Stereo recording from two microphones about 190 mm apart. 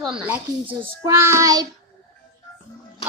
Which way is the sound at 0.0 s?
5° right (ahead or behind).